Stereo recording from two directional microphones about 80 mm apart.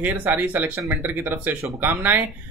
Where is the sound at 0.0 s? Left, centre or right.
Right.